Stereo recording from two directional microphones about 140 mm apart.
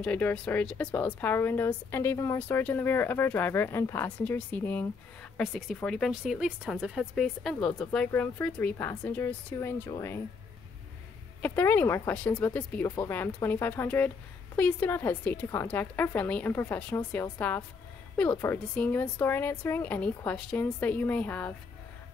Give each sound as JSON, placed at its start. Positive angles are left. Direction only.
{"t": 0.0, "sound": "a woman's voice", "side_deg": 10}
{"t": 5.4, "sound": "a woman's voice", "side_deg": 0}
{"t": 11.4, "sound": "a woman's voice", "side_deg": 15}
{"t": 12.8, "sound": "speech", "side_deg": 30}
{"t": 13.1, "sound": "a woman's voice", "side_deg": 15}